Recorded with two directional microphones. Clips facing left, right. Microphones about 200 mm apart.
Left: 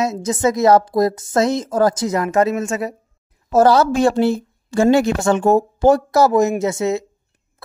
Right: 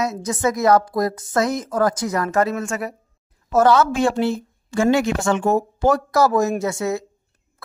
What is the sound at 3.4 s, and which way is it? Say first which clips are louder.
A woman's voice: left 3 dB; 30° left (ahead or behind).